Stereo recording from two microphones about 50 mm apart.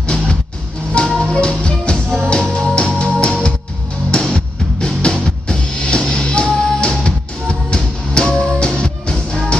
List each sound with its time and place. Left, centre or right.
0.0 s music: centre